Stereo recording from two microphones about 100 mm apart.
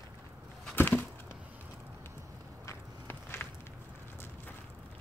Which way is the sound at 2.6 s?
25° left (ahead or behind).